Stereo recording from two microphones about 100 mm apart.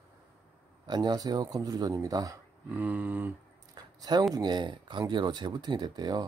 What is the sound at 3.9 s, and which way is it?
Speech, 40° right (ahead or behind).